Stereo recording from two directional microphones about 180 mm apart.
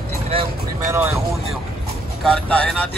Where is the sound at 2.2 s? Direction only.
Centre (ahead or behind).